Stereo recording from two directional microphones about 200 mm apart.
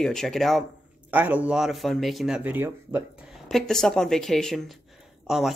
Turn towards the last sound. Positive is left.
turn(degrees=0)  # may be behind; listen again after turning